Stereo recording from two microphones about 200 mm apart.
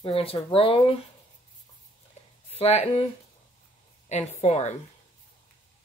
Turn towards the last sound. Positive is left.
turn(degrees=35)  # may be behind; listen again after turning